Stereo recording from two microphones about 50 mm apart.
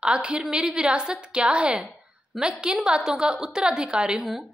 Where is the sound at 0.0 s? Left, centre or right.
Right.